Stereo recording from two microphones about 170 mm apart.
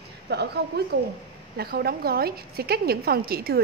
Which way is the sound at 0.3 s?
75° right (ahead or behind).